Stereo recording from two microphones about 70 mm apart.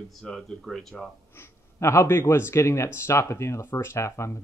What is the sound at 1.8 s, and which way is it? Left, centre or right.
Speech, left.